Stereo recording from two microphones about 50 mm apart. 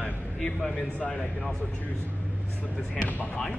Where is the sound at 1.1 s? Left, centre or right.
Centre.